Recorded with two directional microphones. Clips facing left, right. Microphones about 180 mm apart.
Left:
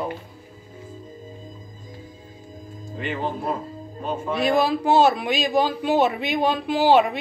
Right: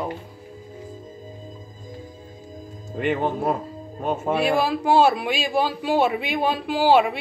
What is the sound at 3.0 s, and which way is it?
Speech, 55° right (ahead or behind).